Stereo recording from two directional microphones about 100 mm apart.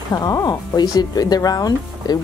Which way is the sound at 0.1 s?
35° left (ahead or behind).